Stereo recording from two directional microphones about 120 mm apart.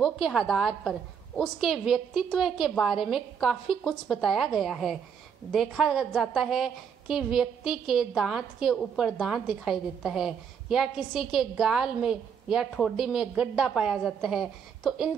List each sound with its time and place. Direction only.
0.0 s a woman's voice: centre (ahead or behind)